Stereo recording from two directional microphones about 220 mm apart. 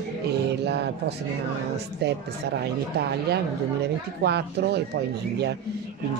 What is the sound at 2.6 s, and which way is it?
Speech, 45° right (ahead or behind).